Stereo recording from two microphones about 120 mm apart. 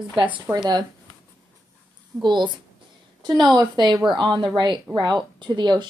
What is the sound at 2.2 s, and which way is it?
Speech, 40° right (ahead or behind).